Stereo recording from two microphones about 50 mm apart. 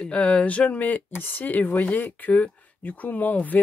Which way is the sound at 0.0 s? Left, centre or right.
Left.